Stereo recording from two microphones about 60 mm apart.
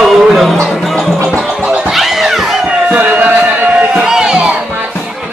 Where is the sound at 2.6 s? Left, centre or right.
Right.